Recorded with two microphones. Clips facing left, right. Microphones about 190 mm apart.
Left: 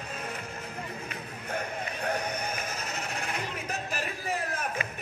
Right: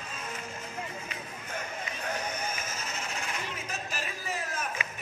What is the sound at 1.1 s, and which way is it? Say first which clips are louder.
Music: left 4 dB; 60° left (ahead or behind).